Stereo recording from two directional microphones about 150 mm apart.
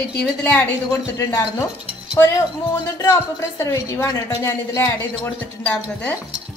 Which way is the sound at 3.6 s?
20° left (ahead or behind).